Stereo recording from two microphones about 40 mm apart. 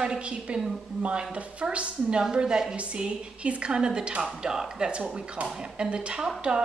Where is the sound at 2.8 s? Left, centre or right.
Right.